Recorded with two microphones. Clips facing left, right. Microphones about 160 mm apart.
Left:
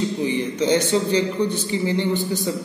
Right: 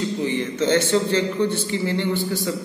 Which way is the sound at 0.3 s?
15° left (ahead or behind).